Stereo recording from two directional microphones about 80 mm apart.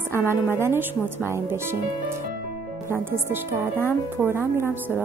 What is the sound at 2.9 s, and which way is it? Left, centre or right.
A woman's voice, right.